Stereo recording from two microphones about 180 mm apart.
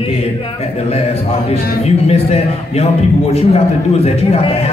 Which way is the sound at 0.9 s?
35° left (ahead or behind).